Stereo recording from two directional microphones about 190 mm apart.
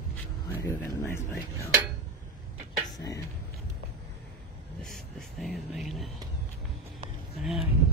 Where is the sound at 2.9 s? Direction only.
15° left (ahead or behind).